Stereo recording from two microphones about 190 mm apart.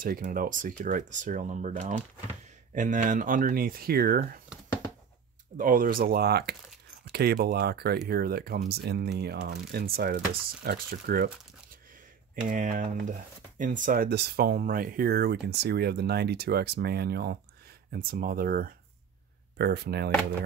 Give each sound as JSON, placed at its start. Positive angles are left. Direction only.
{"t": 0.0, "sound": "speech", "side_deg": -50}
{"t": 5.6, "sound": "speech", "side_deg": -45}
{"t": 12.4, "sound": "speech", "side_deg": -45}